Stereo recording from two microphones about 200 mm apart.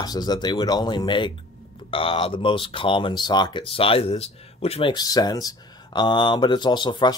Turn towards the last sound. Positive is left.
turn(degrees=20)  # may be behind; listen again after turning